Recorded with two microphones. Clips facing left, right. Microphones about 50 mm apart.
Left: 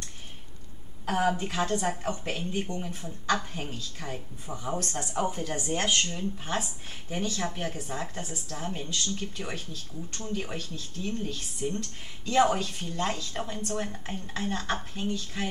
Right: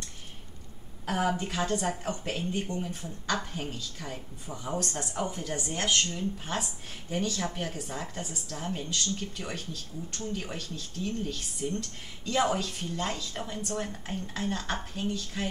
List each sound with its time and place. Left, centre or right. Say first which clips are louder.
1.0 s a woman's voice: left 2 dB; centre
11.6 s a woman's voice: left 1 dB; centre
15.3 s speech: even; centre